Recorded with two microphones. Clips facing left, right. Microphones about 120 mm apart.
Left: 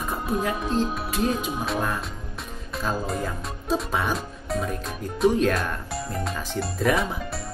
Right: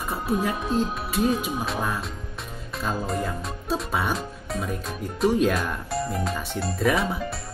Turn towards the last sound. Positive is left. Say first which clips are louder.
# even
turn(degrees=0)  # may be behind; listen again after turning